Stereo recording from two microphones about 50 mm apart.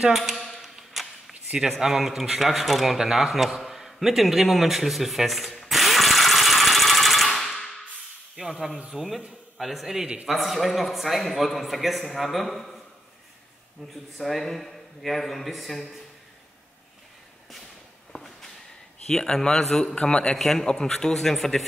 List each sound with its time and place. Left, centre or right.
0.1 s a sound: centre
8.4 s a man's voice: centre
14.1 s a man's voice: centre
18.1 s a sound: centre
19.0 s a man's voice: centre
20.3 s a man's voice: centre